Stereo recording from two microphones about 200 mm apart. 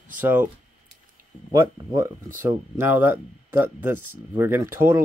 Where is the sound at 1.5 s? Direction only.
15° right (ahead or behind).